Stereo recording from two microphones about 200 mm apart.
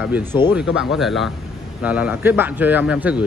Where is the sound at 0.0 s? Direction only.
10° right (ahead or behind).